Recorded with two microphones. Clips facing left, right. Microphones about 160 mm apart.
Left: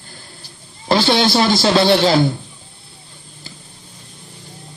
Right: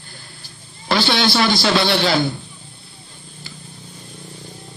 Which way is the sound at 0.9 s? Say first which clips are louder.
Left 3 dB; 40° left (ahead or behind).